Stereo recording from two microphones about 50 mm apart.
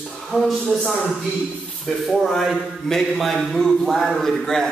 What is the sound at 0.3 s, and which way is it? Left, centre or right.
Speech, right.